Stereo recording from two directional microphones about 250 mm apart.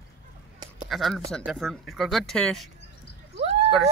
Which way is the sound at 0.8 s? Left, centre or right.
Centre.